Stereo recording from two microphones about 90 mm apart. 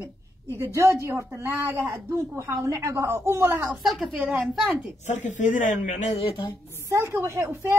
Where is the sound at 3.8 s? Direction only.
Centre (ahead or behind).